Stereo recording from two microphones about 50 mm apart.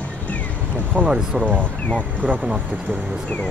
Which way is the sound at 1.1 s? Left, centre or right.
Centre.